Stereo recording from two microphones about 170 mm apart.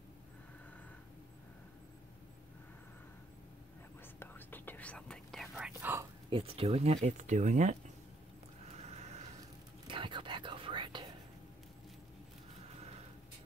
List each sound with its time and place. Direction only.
4.2 s whispering: 10° left (ahead or behind); by 6.0 s 10° right (ahead or behind)
6.3 s speech: 35° right (ahead or behind)
8.6 s neigh: 40° right (ahead or behind)
9.8 s whispering: 30° right (ahead or behind)